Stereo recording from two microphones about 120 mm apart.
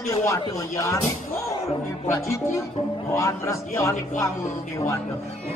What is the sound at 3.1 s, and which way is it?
Speech, 25° left (ahead or behind).